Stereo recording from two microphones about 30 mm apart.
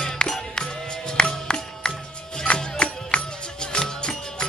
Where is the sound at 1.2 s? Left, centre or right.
Left.